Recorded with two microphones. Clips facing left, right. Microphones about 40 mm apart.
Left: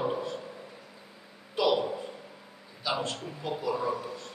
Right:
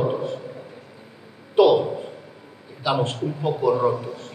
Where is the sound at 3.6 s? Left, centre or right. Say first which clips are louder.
Right 11 dB; right.